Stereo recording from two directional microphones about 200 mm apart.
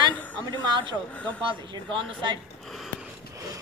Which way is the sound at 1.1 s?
5° left (ahead or behind).